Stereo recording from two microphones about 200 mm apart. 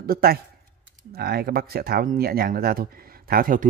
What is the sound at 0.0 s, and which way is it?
Speech, 50° right (ahead or behind).